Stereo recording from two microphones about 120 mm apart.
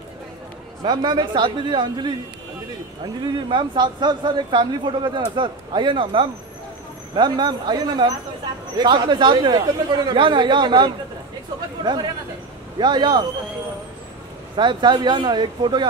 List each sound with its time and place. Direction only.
0.8 s speech: 40° right (ahead or behind)
3.3 s speech: 40° right (ahead or behind)
14.6 s speech: 40° right (ahead or behind)